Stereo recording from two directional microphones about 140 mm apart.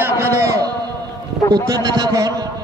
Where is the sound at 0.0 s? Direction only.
20° right (ahead or behind).